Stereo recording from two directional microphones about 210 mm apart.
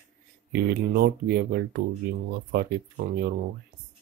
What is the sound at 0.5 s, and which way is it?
Speech, 50° right (ahead or behind).